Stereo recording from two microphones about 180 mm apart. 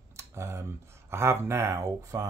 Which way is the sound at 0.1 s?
15° right (ahead or behind).